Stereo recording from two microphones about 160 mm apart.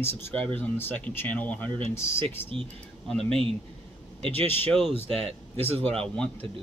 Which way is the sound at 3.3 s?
35° right (ahead or behind).